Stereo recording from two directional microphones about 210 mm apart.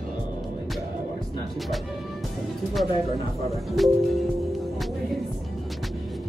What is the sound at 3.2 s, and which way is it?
Speech, 30° right (ahead or behind).